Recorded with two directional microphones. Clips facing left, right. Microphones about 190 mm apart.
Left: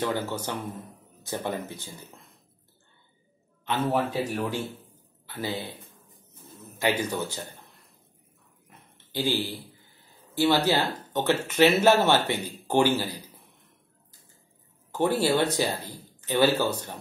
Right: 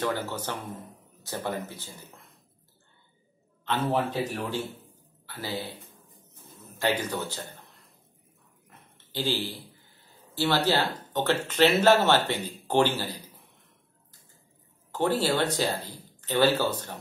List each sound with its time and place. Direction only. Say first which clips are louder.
0.5 s speech: left 2 dB; 15° left (ahead or behind)
3.6 s speech: left 1 dB; 15° left (ahead or behind)
6.8 s speech: left 1 dB; 10° left (ahead or behind)
8.6 s a sound: left 1 dB; 15° left (ahead or behind)
10.3 s speech: left 2 dB; 15° left (ahead or behind)
14.9 s speech: left 2 dB; 15° left (ahead or behind)